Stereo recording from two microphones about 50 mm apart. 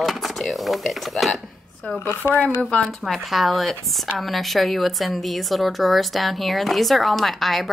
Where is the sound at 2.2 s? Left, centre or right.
Left.